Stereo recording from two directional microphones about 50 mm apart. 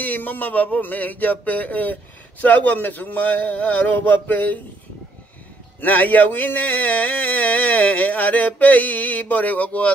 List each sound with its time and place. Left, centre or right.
0.0 s speech: left
5.8 s speech: left